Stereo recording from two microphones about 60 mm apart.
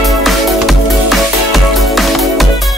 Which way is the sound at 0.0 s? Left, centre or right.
Centre.